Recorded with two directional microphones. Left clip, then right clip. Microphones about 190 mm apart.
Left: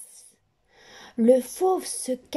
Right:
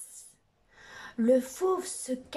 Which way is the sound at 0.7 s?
30° left (ahead or behind).